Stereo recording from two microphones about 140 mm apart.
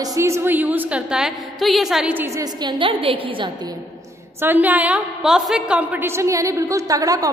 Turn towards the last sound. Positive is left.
turn(degrees=-25)  # may be behind; listen again after turning